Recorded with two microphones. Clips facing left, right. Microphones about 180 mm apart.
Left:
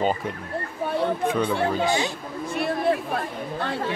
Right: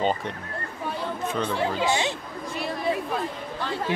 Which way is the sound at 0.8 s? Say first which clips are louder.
Left 7 dB; 60° left (ahead or behind).